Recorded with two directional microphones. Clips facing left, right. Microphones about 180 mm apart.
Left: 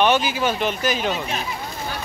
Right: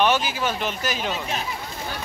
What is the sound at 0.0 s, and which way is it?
Speech, centre (ahead or behind).